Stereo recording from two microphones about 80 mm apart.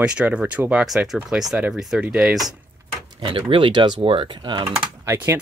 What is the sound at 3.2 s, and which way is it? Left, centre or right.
Speech, right.